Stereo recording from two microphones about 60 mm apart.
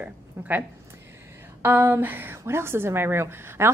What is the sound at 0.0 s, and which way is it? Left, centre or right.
Speech, right.